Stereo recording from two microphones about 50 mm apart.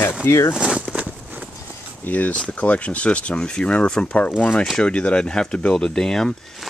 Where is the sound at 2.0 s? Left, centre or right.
Left.